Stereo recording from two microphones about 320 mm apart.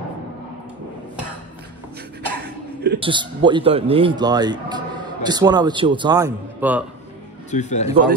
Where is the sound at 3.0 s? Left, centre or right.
Centre.